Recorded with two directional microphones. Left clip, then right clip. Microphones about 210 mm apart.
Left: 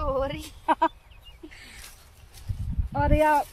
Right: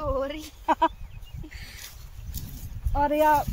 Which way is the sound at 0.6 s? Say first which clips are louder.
Even; centre (ahead or behind).